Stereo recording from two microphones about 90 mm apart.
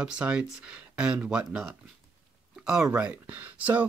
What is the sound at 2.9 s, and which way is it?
Speech, 15° right (ahead or behind).